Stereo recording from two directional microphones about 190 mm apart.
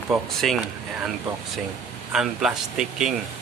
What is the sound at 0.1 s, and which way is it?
Speech, centre (ahead or behind).